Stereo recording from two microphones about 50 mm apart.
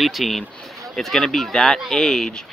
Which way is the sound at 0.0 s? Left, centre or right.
Centre.